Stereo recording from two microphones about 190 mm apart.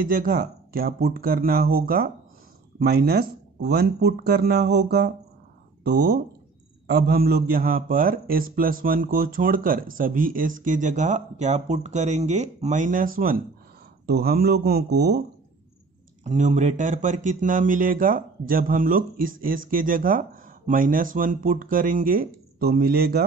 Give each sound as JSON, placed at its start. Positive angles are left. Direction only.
{"t": 0.0, "sound": "speech", "side_deg": -45}
{"t": 16.3, "sound": "speech", "side_deg": -40}